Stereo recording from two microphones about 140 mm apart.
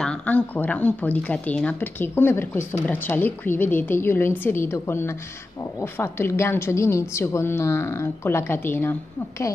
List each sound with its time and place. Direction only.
0.0 s a woman's voice: 10° left (ahead or behind)